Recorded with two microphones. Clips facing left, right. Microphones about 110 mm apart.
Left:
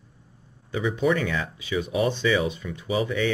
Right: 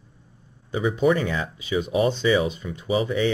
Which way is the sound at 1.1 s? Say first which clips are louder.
Right 1 dB; 25° right (ahead or behind).